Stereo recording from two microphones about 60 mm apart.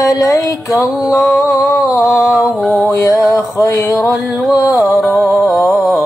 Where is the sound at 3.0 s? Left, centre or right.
Left.